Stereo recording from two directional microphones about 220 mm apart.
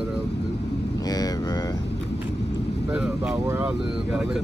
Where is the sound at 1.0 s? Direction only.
15° left (ahead or behind).